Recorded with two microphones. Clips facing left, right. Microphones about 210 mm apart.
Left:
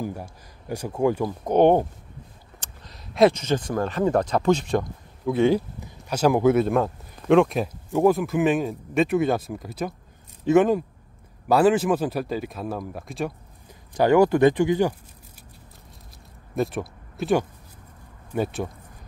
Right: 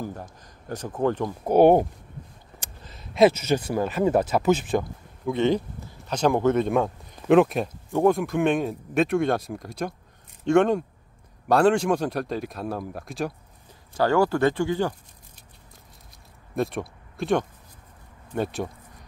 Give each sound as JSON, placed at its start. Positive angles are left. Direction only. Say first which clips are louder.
{"t": 0.0, "sound": "speech", "louder": "left 3 dB", "side_deg": 10}
{"t": 1.4, "sound": "speech", "louder": "right 1 dB", "side_deg": -10}
{"t": 13.9, "sound": "speech", "louder": "left 4 dB", "side_deg": 15}
{"t": 16.5, "sound": "speech", "louder": "left 1 dB", "side_deg": 0}